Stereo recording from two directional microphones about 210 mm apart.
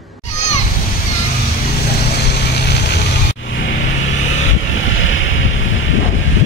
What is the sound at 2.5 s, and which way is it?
Vehicle, 50° left (ahead or behind).